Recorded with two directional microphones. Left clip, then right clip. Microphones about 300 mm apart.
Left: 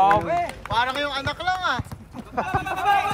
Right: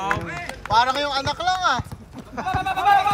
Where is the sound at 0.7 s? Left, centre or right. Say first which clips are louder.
Right 5 dB; centre.